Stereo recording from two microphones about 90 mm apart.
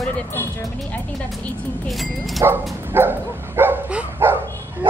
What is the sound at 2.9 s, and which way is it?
Dog, 25° right (ahead or behind).